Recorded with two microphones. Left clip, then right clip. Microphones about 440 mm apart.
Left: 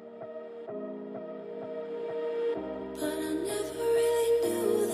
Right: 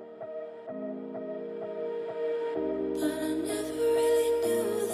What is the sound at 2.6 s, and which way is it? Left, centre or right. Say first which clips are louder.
Music: right 5 dB; centre.